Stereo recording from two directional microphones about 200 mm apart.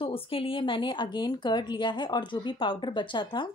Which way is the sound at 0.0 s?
25° left (ahead or behind).